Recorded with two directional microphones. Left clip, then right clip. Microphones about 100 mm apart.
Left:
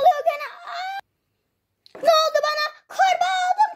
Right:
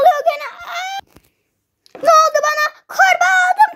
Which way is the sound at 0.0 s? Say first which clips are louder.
Right 5 dB; 35° right (ahead or behind).